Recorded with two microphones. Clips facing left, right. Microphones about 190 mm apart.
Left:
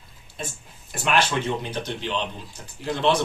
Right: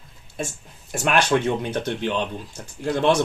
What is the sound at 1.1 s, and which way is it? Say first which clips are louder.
Speech: right 3 dB; 60° right (ahead or behind).